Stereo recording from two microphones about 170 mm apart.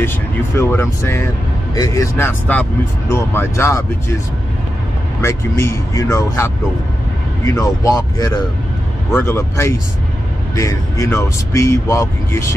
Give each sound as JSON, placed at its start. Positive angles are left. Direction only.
{"t": 0.6, "sound": "speech", "side_deg": 15}
{"t": 5.2, "sound": "speech", "side_deg": 15}